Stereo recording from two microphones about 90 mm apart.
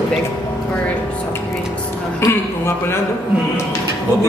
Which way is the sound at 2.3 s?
30° left (ahead or behind).